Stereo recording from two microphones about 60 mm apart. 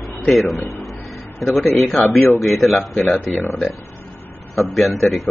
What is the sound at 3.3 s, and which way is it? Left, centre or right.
Speech, left.